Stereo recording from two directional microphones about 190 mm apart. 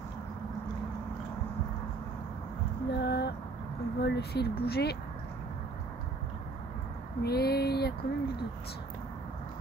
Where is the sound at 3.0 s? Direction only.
60° left (ahead or behind).